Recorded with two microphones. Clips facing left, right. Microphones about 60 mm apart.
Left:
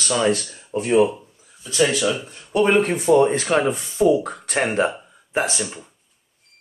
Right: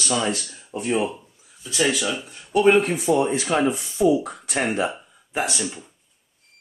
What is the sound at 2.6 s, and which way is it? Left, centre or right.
Speech, left.